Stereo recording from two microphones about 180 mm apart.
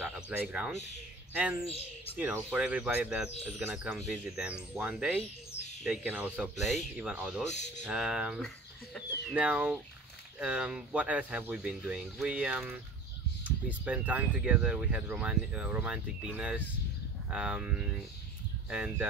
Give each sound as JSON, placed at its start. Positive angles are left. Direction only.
{"t": 0.0, "sound": "a sound", "side_deg": -5}
{"t": 1.3, "sound": "speech", "side_deg": -10}
{"t": 7.4, "sound": "speech", "side_deg": 40}
{"t": 7.8, "sound": "speech", "side_deg": -5}
{"t": 13.8, "sound": "speech", "side_deg": -10}